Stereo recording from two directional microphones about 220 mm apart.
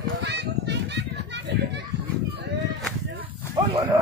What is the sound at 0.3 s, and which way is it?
Children playing, 50° right (ahead or behind).